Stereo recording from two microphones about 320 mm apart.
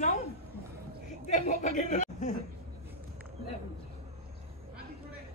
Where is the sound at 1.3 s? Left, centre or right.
Left.